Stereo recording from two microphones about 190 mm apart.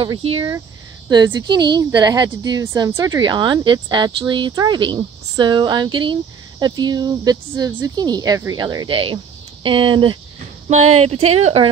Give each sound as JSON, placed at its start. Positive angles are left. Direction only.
{"t": 0.0, "sound": "speech", "side_deg": -25}